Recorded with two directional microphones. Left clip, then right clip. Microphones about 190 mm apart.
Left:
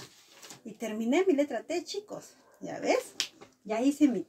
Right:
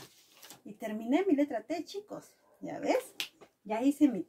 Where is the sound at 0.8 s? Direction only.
15° left (ahead or behind).